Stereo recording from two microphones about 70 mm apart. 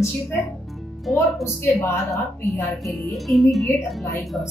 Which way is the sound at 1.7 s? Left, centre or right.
Left.